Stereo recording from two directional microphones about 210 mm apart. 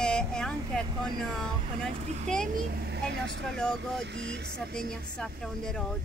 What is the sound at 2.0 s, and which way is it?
Speech, 35° right (ahead or behind).